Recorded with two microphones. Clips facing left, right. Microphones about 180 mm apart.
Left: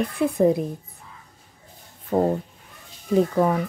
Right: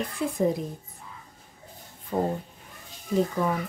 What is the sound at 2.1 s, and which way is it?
Speech, 70° left (ahead or behind).